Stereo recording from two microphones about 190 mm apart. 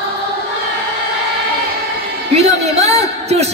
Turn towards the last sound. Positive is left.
turn(degrees=-35)  # may be behind; listen again after turning